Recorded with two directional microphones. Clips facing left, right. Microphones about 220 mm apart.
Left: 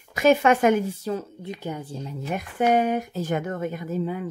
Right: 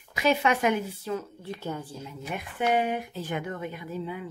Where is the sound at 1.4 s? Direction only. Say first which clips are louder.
Left 2 dB; 15° left (ahead or behind).